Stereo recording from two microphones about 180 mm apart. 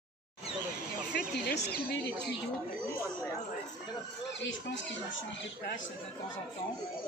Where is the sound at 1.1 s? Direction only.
65° left (ahead or behind).